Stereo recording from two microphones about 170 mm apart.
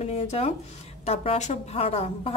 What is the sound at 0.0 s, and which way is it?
A woman's voice, 40° left (ahead or behind).